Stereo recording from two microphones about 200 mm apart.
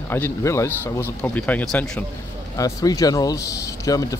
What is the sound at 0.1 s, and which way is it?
A man's voice, 15° left (ahead or behind).